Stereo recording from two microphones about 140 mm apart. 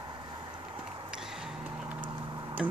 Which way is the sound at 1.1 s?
5° right (ahead or behind).